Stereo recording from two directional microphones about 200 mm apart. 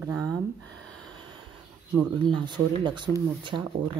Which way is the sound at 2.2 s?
25° right (ahead or behind).